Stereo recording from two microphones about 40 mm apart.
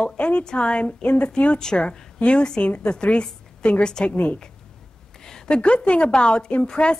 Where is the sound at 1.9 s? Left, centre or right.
Left.